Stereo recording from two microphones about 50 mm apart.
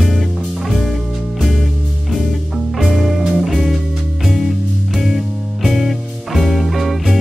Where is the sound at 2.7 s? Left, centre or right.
Centre.